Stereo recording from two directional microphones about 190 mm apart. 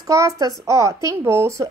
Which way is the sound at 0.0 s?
20° right (ahead or behind).